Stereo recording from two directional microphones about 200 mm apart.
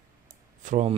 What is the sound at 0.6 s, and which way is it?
Speech, 40° right (ahead or behind).